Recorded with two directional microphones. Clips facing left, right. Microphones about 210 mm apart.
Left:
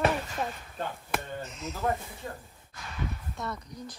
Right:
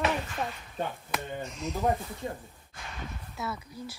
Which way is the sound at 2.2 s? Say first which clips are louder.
Right 4 dB; 20° right (ahead or behind).